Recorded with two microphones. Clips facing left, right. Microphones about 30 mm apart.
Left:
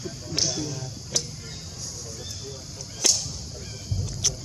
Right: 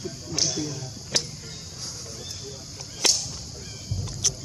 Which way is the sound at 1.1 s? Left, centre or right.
Right.